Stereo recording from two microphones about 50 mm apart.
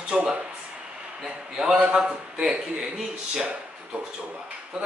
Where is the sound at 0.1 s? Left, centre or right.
Right.